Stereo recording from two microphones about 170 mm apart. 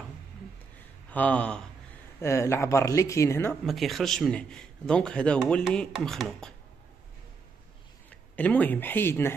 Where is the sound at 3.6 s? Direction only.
Centre (ahead or behind).